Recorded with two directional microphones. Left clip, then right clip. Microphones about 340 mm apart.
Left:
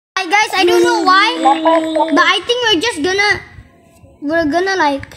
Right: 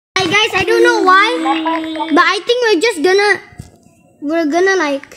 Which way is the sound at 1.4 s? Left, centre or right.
Left.